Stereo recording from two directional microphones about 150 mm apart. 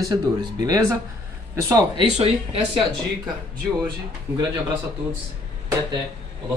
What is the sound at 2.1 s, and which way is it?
Speech, 45° right (ahead or behind).